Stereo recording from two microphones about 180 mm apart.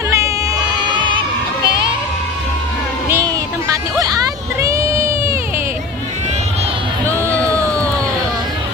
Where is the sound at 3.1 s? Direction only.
15° right (ahead or behind).